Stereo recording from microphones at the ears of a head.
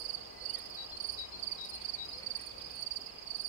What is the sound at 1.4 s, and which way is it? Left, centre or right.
Insect, right.